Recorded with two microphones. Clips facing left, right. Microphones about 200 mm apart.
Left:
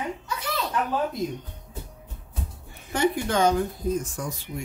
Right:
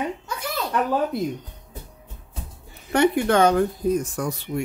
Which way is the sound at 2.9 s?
65° right (ahead or behind).